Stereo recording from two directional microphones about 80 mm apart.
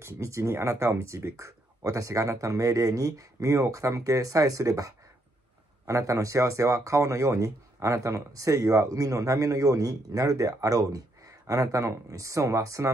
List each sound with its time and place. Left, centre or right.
0.0 s speech: right